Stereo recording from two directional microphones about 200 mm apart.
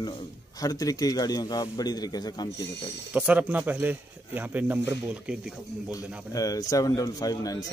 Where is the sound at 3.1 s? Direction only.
5° right (ahead or behind).